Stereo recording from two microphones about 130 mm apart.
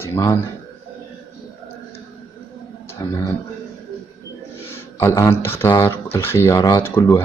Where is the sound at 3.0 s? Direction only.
25° left (ahead or behind).